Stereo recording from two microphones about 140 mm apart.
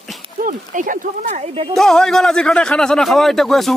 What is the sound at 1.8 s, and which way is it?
Speech, 5° left (ahead or behind).